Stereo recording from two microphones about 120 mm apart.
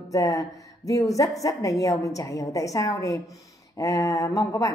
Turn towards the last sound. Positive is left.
turn(degrees=25)  # may be behind; listen again after turning